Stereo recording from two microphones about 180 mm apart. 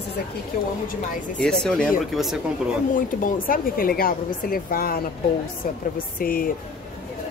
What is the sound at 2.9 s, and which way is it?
Speech, 50° left (ahead or behind).